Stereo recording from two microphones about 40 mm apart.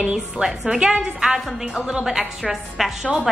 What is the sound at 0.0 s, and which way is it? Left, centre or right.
A woman's voice, centre.